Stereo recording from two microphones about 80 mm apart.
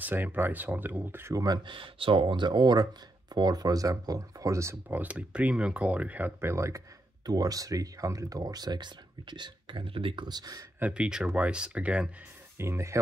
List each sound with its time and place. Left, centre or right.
0.0 s speech: right
1.3 s speech: right
1.7 s speech: right
4.8 s speech: right
6.5 s speech: right
7.2 s speech: right
10.8 s speech: centre
12.5 s speech: right